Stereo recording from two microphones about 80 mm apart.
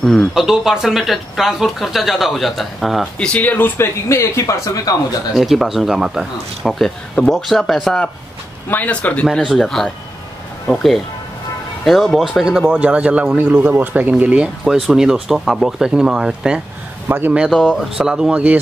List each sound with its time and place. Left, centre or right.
0.0 s speech: centre
0.3 s speech: centre
3.2 s speech: centre; by 4.9 s left
5.3 s speech: centre
8.6 s speech: left
9.5 s speech: centre
17.1 s speech: right
17.6 s speech: centre